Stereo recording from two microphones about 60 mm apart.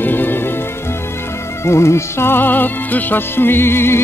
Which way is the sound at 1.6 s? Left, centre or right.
Left.